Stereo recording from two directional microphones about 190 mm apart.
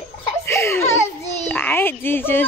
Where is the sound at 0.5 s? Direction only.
15° left (ahead or behind).